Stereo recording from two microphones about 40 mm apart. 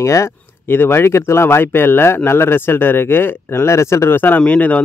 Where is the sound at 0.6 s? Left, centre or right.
Left.